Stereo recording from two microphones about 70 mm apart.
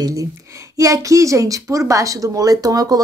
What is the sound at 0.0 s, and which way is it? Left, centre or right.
A woman's voice, right.